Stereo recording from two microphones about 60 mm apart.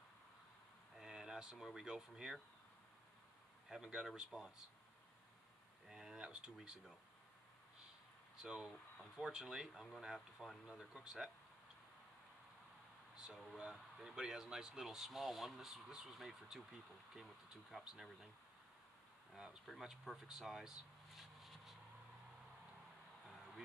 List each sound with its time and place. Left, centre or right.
0.9 s speech: centre
3.6 s speech: centre
5.9 s a sound: centre
8.4 s speech: centre
13.1 s speech: centre
19.3 s speech: centre